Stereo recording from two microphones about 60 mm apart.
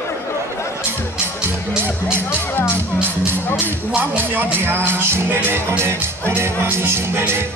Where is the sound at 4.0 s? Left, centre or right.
Right.